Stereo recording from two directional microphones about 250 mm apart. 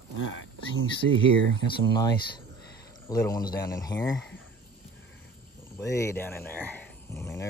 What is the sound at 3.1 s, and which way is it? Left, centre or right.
Speech, centre.